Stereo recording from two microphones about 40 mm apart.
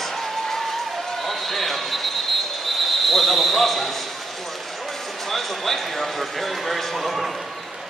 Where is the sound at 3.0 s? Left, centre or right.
Centre.